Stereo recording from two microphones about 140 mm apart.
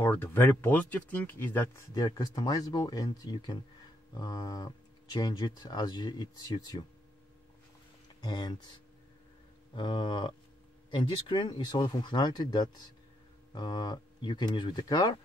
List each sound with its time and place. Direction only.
0.0 s speech: 15° left (ahead or behind)
2.0 s speech: 30° left (ahead or behind)
8.2 s speech: 30° left (ahead or behind)
9.8 s speech: 35° left (ahead or behind)